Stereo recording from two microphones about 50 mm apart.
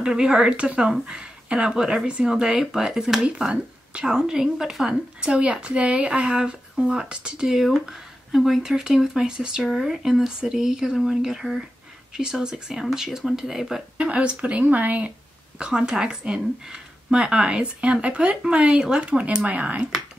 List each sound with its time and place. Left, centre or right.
0.0 s speech: centre
2.4 s speech: centre
9.6 s speech: centre
13.9 s speech: right
15.6 s speech: centre